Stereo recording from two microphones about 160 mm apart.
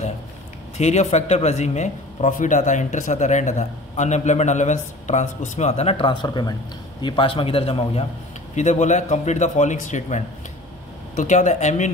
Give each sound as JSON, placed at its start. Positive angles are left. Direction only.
{"t": 0.7, "sound": "a man's voice", "side_deg": 45}
{"t": 8.5, "sound": "a man's voice", "side_deg": 45}